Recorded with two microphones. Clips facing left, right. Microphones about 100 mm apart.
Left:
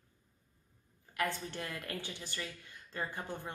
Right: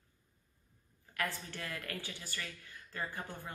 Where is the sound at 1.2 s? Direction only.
20° left (ahead or behind).